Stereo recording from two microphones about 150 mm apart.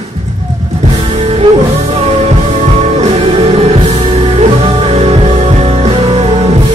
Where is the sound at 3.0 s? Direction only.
40° right (ahead or behind).